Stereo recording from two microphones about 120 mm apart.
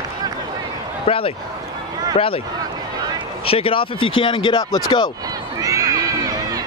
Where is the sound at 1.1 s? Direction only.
50° left (ahead or behind).